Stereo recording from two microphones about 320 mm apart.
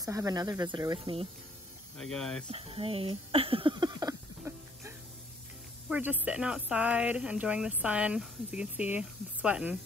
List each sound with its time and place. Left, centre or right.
0.0 s speech: centre
2.0 s speech: centre
2.5 s a sound: centre
5.9 s speech: centre